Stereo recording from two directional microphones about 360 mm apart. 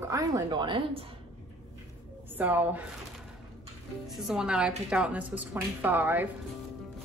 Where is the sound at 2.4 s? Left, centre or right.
Centre.